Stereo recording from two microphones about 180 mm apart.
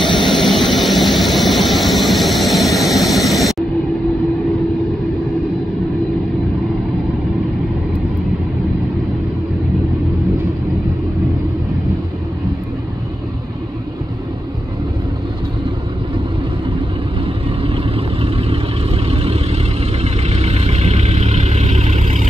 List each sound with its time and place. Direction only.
0.0 s vehicle: centre (ahead or behind)
17.6 s vehicle: 30° right (ahead or behind)